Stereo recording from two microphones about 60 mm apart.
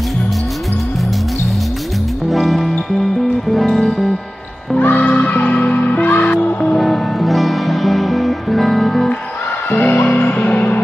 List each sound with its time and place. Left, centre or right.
2.2 s music: centre
4.7 s music: left
6.6 s music: centre
9.7 s music: left